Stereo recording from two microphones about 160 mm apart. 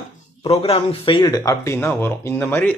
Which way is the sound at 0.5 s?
35° left (ahead or behind).